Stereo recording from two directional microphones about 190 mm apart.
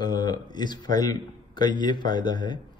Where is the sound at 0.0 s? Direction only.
20° left (ahead or behind).